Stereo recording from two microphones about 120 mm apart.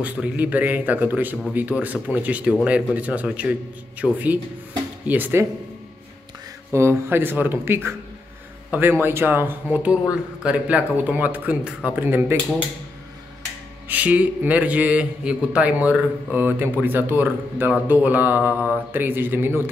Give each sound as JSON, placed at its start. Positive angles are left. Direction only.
{"t": 0.0, "sound": "speech", "side_deg": -10}
{"t": 6.7, "sound": "speech", "side_deg": -20}
{"t": 13.8, "sound": "speech", "side_deg": -15}